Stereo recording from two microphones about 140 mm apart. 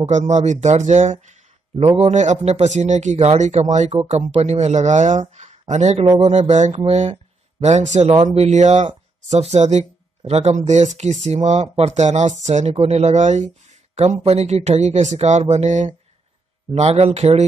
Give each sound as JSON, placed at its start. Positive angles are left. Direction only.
{"t": 0.0, "sound": "speech", "side_deg": -55}
{"t": 1.8, "sound": "speech", "side_deg": -45}
{"t": 16.7, "sound": "speech", "side_deg": -45}